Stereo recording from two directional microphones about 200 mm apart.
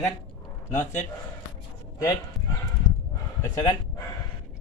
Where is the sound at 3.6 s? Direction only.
20° left (ahead or behind).